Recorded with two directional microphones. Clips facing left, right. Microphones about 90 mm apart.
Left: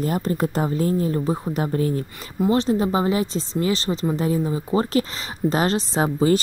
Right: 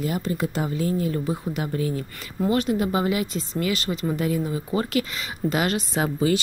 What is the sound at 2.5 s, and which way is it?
A woman's voice, 30° left (ahead or behind).